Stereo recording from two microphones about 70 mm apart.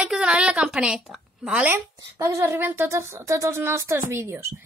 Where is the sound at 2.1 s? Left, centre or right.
Right.